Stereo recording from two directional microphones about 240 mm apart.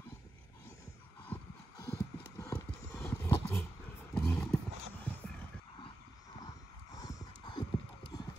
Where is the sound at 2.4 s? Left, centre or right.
Centre.